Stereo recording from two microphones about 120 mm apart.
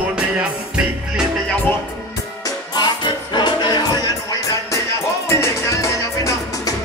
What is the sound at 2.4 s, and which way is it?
Music, 35° left (ahead or behind).